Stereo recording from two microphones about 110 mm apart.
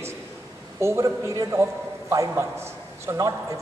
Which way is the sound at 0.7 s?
25° right (ahead or behind).